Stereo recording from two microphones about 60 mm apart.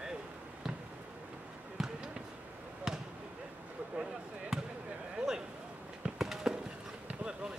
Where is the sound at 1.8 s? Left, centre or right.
Centre.